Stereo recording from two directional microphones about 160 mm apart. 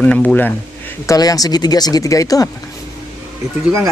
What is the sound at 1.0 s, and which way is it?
Speech, 20° left (ahead or behind).